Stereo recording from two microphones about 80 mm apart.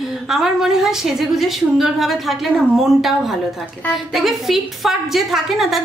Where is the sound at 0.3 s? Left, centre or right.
Centre.